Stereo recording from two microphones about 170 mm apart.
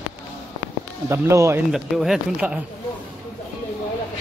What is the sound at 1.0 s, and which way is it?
Speech, 15° right (ahead or behind).